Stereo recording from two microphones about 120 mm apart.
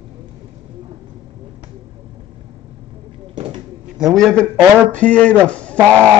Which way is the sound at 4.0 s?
Centre (ahead or behind).